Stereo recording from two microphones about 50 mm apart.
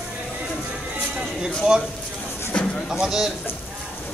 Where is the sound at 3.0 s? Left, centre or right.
Centre.